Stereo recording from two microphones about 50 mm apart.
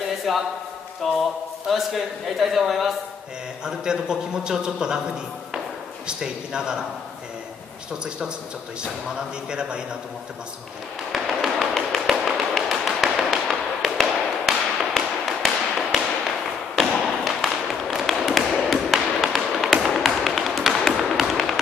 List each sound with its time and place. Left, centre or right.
0.3 s a man's voice: centre
3.6 s a man's voice: centre
6.0 s a man's voice: centre
9.5 s a man's voice: centre
11.2 s tap: centre